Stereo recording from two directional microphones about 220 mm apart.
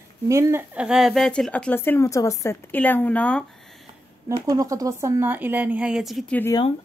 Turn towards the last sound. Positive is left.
turn(degrees=5)  # may be behind; listen again after turning